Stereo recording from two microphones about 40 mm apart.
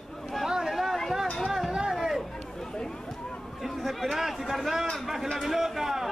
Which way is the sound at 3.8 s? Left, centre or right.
Centre.